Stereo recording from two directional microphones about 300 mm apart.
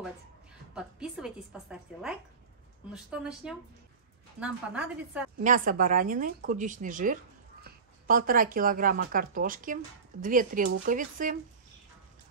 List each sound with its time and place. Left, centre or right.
0.7 s a woman's voice: centre
5.4 s speech: right